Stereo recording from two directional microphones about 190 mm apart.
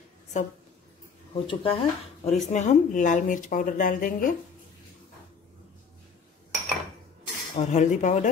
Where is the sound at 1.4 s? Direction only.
30° left (ahead or behind); by 4.3 s 45° left (ahead or behind).